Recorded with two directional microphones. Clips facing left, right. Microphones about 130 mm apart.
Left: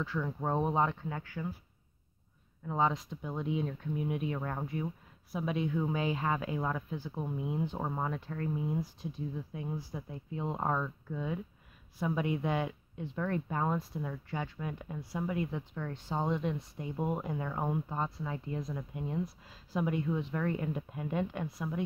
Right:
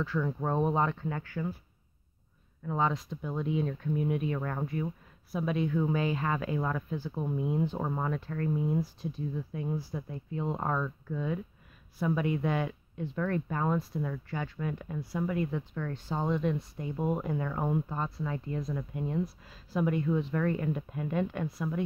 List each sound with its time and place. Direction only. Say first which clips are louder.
0.0 s speech: right 3 dB; 15° left (ahead or behind)
2.6 s speech: right 1 dB; 15° left (ahead or behind)